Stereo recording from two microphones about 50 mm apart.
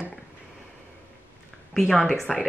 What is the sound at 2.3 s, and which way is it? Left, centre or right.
Speech, centre.